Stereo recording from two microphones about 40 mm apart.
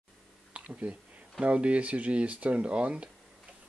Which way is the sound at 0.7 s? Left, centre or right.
Right.